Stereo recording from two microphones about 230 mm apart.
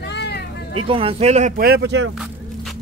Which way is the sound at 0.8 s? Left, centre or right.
Right.